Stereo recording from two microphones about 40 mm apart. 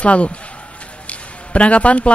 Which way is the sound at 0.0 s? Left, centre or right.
Left.